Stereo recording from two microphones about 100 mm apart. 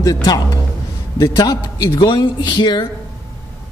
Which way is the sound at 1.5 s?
45° left (ahead or behind).